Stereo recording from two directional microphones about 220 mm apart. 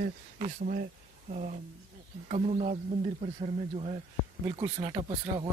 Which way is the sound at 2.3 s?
30° right (ahead or behind).